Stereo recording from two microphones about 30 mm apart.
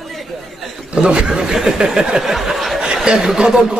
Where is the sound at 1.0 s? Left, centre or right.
Right.